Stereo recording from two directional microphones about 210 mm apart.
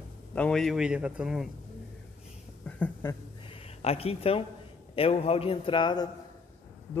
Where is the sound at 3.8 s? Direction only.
30° left (ahead or behind).